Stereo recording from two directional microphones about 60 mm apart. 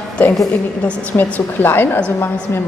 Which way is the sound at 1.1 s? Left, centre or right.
Left.